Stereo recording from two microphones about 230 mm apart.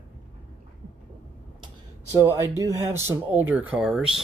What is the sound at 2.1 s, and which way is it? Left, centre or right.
Speech, centre.